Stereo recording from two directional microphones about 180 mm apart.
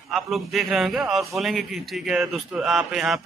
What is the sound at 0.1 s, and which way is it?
A man's voice, centre (ahead or behind).